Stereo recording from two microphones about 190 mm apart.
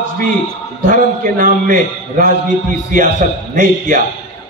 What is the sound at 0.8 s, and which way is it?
A man's voice, 45° right (ahead or behind).